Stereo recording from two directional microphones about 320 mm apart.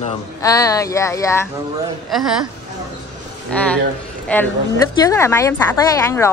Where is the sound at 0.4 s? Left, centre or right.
Centre.